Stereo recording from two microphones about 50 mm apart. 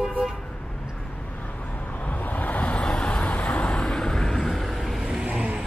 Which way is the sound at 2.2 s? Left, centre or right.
Left.